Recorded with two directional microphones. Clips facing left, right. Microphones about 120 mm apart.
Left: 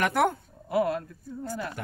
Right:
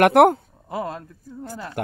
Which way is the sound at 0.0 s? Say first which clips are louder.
Right 11 dB; 70° right (ahead or behind).